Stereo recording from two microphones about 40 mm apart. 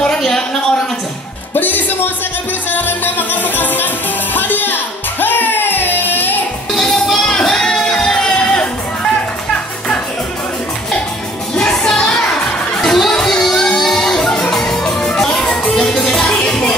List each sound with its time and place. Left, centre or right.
0.0 s a sound: centre
1.5 s music: left
7.2 s music: centre
11.5 s music: left
12.8 s music: centre
13.1 s music: centre